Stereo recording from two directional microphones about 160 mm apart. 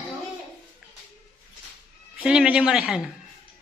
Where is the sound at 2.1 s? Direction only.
5° right (ahead or behind).